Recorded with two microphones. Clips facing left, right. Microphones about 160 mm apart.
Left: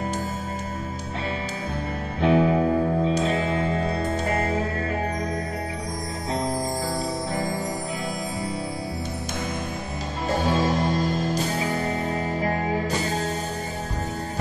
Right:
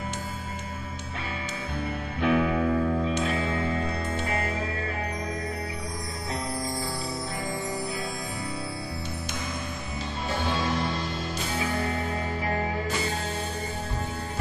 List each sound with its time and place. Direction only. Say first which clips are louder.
2.2 s music: left 4 dB; 30° left (ahead or behind)
10.3 s music: left 6 dB; 40° left (ahead or behind)